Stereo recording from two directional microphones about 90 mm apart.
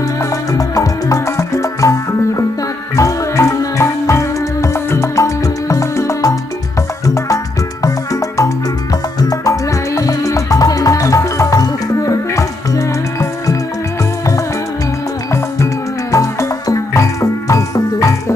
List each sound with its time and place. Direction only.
0.2 s music: 40° left (ahead or behind)
7.8 s music: 40° left (ahead or behind)
15.3 s music: 35° left (ahead or behind)